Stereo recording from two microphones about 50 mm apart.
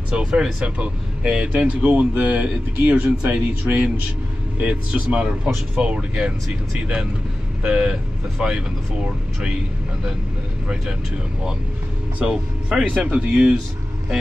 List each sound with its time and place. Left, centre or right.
0.1 s speech: centre
1.8 s speech: right
12.2 s speech: centre